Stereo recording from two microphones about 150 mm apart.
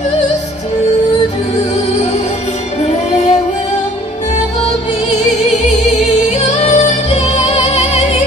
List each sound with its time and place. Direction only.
2.8 s music: 50° left (ahead or behind)
6.3 s music: 50° left (ahead or behind)